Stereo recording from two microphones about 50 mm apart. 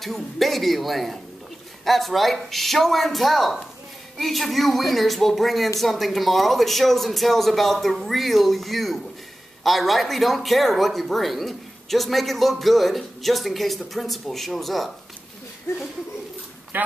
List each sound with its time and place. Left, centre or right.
0.0 s speech: centre
16.7 s speech: right